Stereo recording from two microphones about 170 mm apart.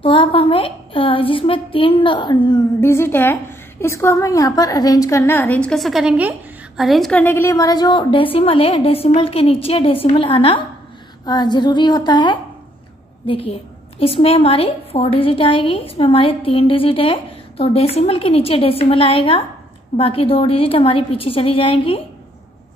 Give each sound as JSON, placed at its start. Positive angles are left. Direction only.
{"t": 0.0, "sound": "a woman's voice", "side_deg": 30}
{"t": 2.8, "sound": "a woman's voice", "side_deg": 15}